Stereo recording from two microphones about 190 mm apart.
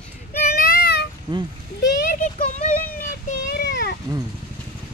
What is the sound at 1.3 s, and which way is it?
Speech, 25° right (ahead or behind).